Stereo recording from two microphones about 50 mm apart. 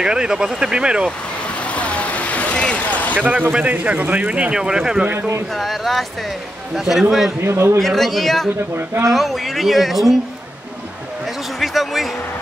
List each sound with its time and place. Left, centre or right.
0.0 s speech: centre
1.5 s vehicle: left
3.2 s speech: right
5.0 s speech: right
5.5 s speech: centre
7.4 s speech: right
7.8 s speech: centre
11.6 s speech: centre